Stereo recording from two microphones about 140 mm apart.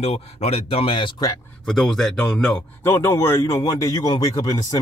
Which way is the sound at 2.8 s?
20° left (ahead or behind).